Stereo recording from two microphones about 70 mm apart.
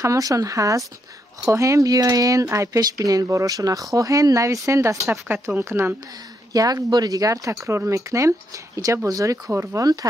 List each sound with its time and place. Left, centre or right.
0.0 s speech: right
2.8 s speech: right
5.6 s speech: right
6.5 s speech: right
9.5 s speech: right